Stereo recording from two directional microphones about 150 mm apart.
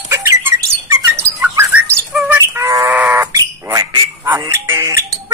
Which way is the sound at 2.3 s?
15° right (ahead or behind).